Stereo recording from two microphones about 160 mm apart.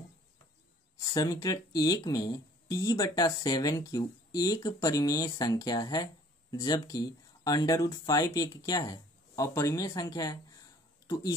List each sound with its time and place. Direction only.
1.1 s speech: 25° left (ahead or behind)